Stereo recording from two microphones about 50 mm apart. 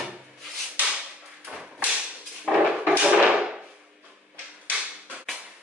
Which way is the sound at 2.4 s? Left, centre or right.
Right.